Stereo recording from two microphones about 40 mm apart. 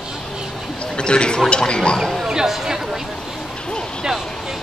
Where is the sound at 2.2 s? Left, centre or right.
Centre.